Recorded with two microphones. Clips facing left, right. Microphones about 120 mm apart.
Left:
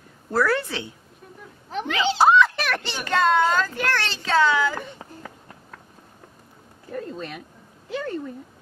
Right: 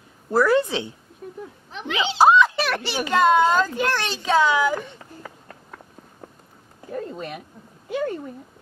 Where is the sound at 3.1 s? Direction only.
15° right (ahead or behind).